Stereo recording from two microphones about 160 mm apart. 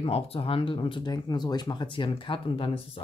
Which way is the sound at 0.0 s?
35° left (ahead or behind).